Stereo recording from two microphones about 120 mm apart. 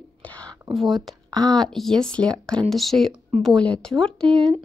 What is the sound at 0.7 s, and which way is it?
Speech, centre (ahead or behind).